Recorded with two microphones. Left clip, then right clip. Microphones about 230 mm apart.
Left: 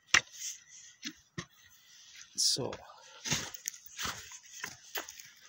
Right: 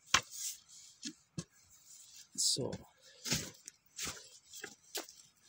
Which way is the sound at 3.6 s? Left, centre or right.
Centre.